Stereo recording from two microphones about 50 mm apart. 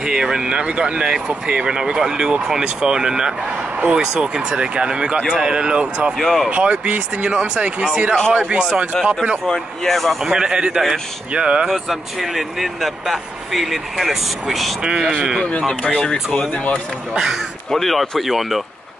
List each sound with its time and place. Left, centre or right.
0.0 s speech: centre
6.1 s speech: centre
6.5 s speech: right
8.5 s speech: centre
9.8 s speech: centre
10.2 s speech: centre
11.6 s speech: centre
14.8 s speech: centre
16.0 s speech: centre
17.1 s speech: centre
17.6 s speech: centre